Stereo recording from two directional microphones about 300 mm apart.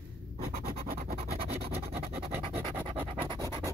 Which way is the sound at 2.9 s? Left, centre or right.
Centre.